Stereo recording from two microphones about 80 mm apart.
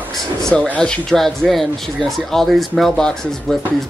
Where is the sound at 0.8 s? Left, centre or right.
Centre.